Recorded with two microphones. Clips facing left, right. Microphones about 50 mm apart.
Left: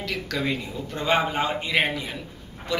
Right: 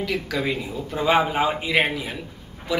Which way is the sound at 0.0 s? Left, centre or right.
Centre.